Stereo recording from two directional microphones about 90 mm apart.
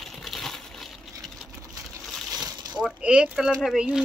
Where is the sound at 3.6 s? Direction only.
5° right (ahead or behind).